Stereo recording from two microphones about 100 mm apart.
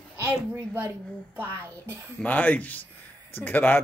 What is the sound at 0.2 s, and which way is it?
A woman's voice, 15° right (ahead or behind).